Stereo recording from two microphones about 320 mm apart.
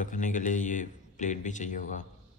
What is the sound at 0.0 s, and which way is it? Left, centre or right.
A man's voice, left.